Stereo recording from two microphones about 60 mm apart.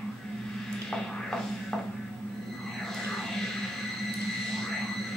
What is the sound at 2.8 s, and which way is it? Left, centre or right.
Music, centre.